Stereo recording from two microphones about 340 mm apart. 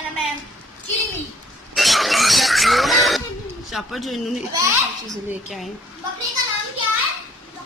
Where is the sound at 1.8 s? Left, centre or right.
Centre.